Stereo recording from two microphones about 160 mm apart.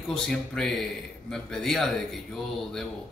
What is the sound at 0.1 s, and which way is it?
A man's voice, 5° left (ahead or behind).